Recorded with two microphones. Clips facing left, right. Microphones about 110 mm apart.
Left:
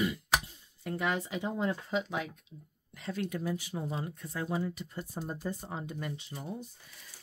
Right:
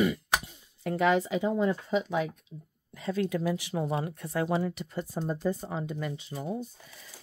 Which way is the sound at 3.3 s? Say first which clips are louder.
Right 6 dB; 90° right.